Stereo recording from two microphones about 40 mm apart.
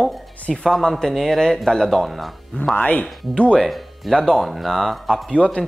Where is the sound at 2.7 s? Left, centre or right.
Left.